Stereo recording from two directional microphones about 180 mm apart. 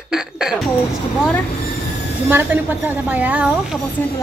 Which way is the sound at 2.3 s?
10° right (ahead or behind).